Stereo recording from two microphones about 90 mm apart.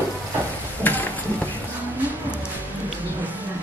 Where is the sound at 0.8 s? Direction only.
20° left (ahead or behind).